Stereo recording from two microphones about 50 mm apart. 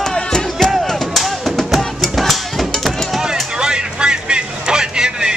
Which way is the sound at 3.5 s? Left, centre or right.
Centre.